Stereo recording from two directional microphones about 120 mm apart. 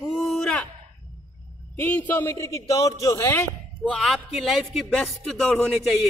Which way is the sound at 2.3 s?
25° left (ahead or behind).